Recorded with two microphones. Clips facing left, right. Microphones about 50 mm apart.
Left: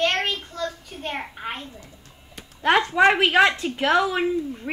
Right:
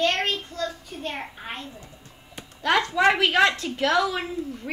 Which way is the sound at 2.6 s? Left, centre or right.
Left.